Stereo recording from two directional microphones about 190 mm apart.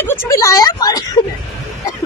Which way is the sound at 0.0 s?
15° left (ahead or behind).